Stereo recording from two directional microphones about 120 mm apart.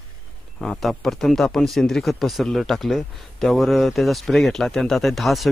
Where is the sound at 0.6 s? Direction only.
5° left (ahead or behind).